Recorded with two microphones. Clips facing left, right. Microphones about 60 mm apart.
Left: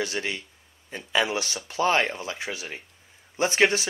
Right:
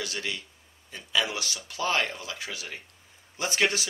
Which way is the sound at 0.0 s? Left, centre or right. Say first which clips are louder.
Left 5 dB; left.